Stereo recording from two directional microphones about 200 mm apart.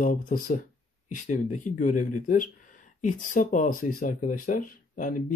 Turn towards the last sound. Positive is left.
turn(degrees=40)  # may be behind; listen again after turning